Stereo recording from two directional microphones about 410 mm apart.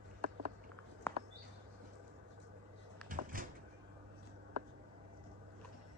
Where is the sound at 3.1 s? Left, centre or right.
Centre.